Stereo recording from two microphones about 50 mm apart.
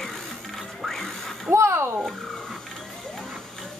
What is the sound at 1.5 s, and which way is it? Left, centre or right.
Speech, right.